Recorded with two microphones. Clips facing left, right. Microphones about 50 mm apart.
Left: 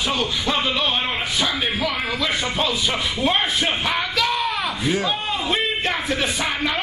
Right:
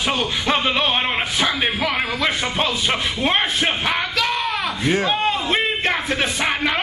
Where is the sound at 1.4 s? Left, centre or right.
Right.